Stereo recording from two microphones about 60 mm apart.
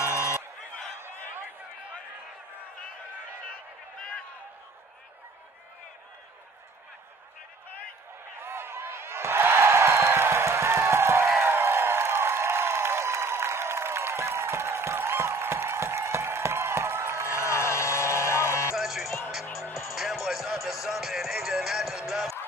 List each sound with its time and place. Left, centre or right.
0.0 s music: left
8.4 s music: right
11.4 s a sound: right
17.3 s a sound: left
18.8 s music: centre
19.6 s music: left
20.0 s music: centre